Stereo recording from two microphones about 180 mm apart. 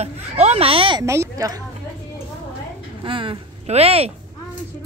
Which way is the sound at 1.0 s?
15° right (ahead or behind).